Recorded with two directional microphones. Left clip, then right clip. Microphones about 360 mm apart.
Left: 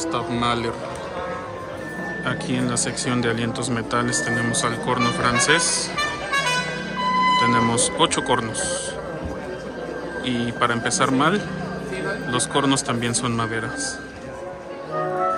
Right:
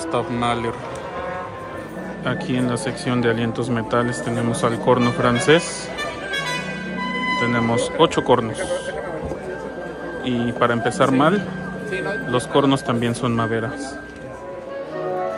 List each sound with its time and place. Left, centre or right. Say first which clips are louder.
0.1 s speech: right 3 dB; centre
2.2 s speech: right 3 dB; centre
7.3 s speech: left 2 dB; centre
10.2 s speech: right 3 dB; centre